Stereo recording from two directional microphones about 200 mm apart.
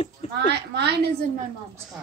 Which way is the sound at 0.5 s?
55° right (ahead or behind).